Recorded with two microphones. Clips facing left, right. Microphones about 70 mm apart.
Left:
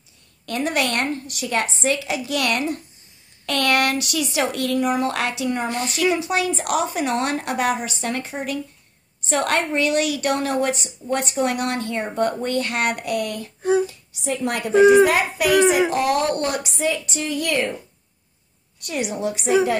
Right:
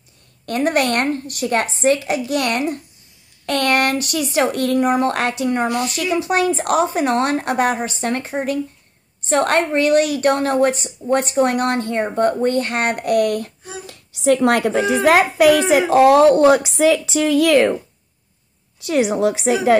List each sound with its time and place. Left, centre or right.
0.5 s a woman's voice: right
5.7 s speech: left
6.2 s a woman's voice: right
13.6 s a child's voice: left
13.8 s speech: right
18.9 s speech: right